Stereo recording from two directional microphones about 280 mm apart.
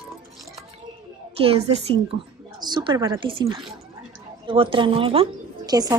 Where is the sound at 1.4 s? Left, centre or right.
Right.